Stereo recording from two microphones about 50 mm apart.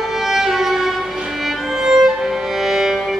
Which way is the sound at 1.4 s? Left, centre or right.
Centre.